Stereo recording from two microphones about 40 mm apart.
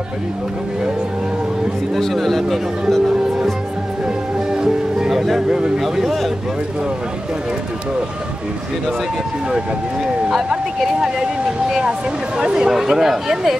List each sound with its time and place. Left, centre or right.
2.0 s speech: centre
4.5 s music: centre
5.1 s speech: centre
10.8 s speech: centre
12.4 s speech: centre